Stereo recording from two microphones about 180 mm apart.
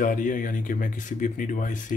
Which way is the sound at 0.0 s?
45° left (ahead or behind).